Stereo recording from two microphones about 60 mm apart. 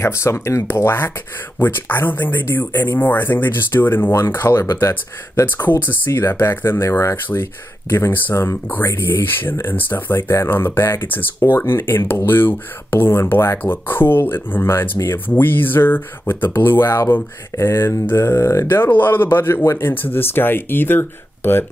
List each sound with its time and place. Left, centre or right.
0.0 s speech: left
0.8 s speech: left
6.1 s speech: left
6.8 s speech: left
7.9 s speech: left
13.6 s speech: left
15.2 s speech: left
17.6 s speech: left
19.9 s speech: left